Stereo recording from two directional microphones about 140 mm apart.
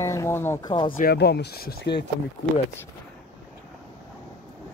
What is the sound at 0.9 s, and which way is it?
Speech, 90° left.